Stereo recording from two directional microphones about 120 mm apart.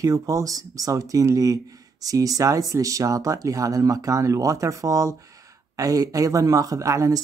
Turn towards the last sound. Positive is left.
turn(degrees=-25)  # may be behind; listen again after turning